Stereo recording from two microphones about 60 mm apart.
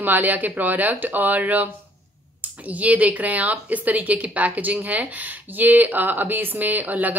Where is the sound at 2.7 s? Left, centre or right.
Right.